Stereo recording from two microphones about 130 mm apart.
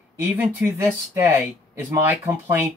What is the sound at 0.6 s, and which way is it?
Speech, 10° right (ahead or behind).